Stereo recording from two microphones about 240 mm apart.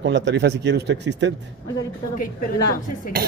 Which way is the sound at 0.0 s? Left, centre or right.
Right.